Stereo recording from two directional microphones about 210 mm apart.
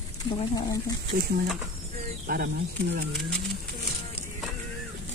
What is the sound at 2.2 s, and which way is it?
Speech, 45° right (ahead or behind).